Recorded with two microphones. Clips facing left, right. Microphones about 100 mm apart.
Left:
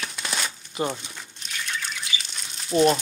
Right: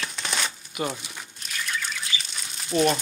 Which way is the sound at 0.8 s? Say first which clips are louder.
Left 2 dB; 30° left (ahead or behind).